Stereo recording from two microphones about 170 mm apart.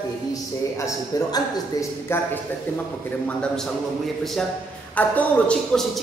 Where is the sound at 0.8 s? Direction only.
20° left (ahead or behind).